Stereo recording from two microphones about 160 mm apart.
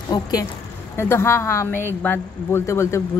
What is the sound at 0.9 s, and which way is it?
Speech, 15° left (ahead or behind).